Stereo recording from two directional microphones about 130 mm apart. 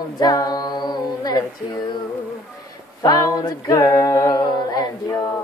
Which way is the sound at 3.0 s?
25° left (ahead or behind).